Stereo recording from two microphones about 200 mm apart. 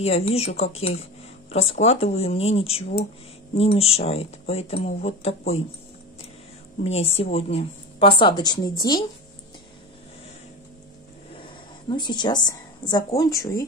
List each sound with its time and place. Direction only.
0.0 s speech: 30° left (ahead or behind)
6.8 s speech: 30° left (ahead or behind)
11.9 s a woman's voice: 20° left (ahead or behind)